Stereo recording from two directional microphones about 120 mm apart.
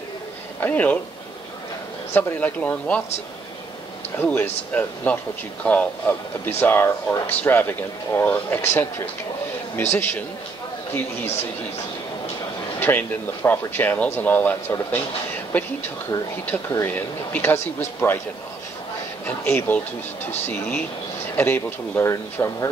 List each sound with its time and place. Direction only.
0.6 s speech: 15° left (ahead or behind)
2.1 s speech: 15° left (ahead or behind)
4.2 s speech: 15° left (ahead or behind)
12.8 s speech: 15° left (ahead or behind)
16.7 s speech: 15° left (ahead or behind)
19.2 s speech: 15° left (ahead or behind)